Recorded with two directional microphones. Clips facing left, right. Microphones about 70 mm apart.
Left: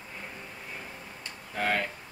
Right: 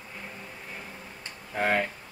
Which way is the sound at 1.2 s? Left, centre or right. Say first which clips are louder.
Right 3 dB; centre.